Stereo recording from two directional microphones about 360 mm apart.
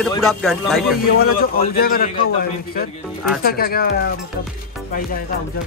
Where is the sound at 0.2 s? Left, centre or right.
Centre.